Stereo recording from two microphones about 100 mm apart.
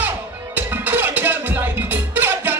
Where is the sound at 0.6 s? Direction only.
20° right (ahead or behind).